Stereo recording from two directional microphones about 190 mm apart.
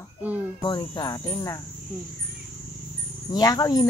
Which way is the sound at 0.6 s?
25° left (ahead or behind).